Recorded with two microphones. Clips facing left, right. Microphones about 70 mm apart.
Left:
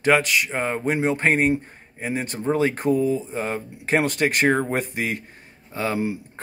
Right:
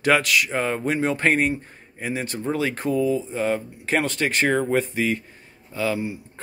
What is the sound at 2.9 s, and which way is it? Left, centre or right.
Speech, left.